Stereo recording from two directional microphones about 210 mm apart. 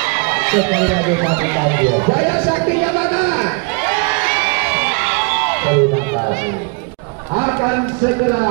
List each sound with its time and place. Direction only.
0.0 s a man's voice: 10° right (ahead or behind)
7.3 s a man's voice: 15° right (ahead or behind)